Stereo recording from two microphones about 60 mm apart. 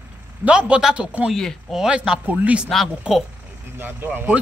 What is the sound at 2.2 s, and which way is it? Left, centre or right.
Speech, right.